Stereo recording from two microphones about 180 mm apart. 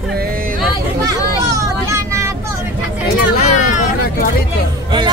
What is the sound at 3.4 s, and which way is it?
Hubbub, 40° left (ahead or behind).